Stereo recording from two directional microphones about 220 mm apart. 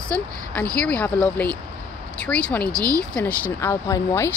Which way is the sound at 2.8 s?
15° right (ahead or behind).